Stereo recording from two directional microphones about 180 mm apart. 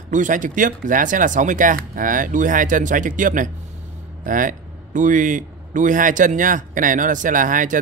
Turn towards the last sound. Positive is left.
turn(degrees=-45)  # may be behind; listen again after turning